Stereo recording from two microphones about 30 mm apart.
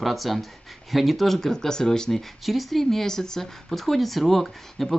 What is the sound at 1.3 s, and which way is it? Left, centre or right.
Speech, centre.